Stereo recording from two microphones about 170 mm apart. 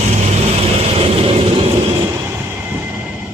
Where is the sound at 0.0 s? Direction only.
40° right (ahead or behind).